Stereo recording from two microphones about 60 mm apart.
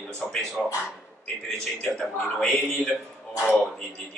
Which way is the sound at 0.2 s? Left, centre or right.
Centre.